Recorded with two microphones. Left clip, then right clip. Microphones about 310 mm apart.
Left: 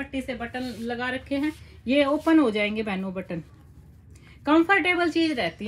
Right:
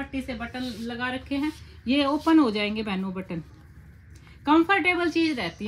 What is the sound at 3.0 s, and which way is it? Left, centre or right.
Speech, centre.